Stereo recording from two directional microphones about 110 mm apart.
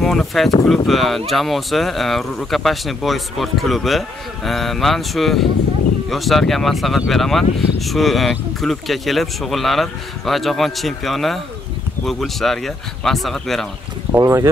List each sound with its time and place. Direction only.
0.0 s speech: centre (ahead or behind)
14.1 s speech: 25° right (ahead or behind)